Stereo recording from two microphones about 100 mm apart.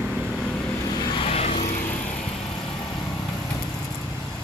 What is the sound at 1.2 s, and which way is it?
Vehicle, 90° left.